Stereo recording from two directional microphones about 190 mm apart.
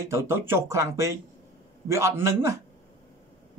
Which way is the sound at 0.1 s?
15° right (ahead or behind).